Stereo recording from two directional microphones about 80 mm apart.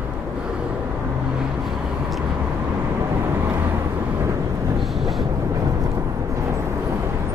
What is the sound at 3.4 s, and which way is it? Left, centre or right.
Vehicle, right.